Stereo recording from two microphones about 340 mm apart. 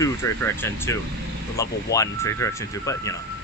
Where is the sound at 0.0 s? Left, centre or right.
Centre.